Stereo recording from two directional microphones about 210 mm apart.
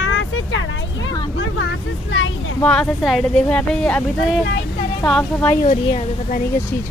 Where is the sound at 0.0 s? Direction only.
65° left (ahead or behind).